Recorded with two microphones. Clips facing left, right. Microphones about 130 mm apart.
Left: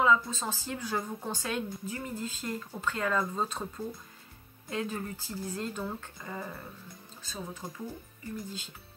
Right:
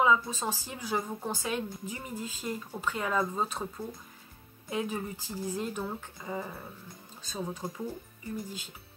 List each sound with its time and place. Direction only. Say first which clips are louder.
0.0 s a woman's voice: even; 15° right (ahead or behind)